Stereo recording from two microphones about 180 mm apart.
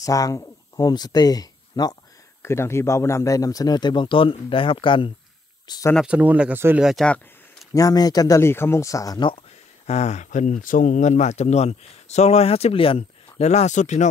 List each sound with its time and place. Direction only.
0.0 s a man's voice: 20° left (ahead or behind)
5.9 s speech: 5° right (ahead or behind)
7.7 s a man's voice: 20° left (ahead or behind)
9.8 s speech: 40° left (ahead or behind)